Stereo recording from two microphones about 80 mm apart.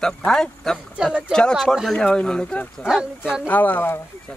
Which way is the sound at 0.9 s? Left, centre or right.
Centre.